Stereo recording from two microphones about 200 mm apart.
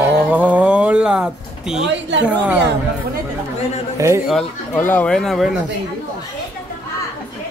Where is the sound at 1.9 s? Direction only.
65° right (ahead or behind).